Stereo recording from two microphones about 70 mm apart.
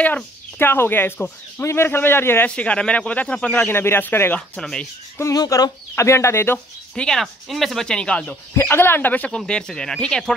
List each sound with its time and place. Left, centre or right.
0.0 s speech: left
2.5 s speech: centre
3.5 s speech: left
4.4 s speech: centre
5.2 s speech: left
5.9 s speech: left
7.0 s speech: centre
8.5 s speech: left
9.5 s speech: centre